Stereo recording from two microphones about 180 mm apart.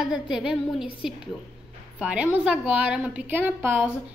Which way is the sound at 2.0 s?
5° right (ahead or behind).